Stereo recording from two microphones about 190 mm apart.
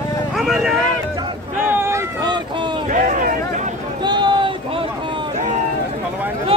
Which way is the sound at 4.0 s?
25° right (ahead or behind).